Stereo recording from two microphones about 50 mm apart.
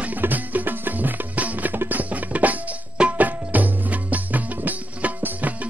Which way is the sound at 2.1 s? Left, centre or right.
Right.